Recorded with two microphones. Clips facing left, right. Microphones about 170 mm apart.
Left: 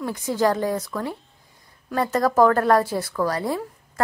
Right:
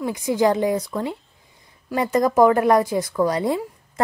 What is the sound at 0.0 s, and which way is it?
A woman's voice, 15° right (ahead or behind).